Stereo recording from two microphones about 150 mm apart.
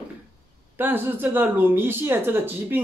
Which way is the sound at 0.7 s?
15° right (ahead or behind).